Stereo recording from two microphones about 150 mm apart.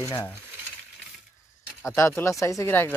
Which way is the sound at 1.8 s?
15° left (ahead or behind).